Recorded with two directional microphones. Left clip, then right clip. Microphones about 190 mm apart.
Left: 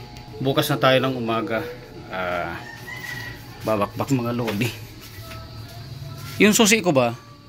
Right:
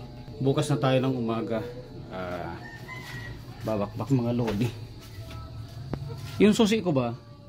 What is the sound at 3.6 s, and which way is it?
Speech, 10° left (ahead or behind).